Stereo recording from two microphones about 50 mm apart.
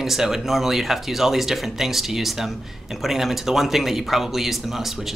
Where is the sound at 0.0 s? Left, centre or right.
Centre.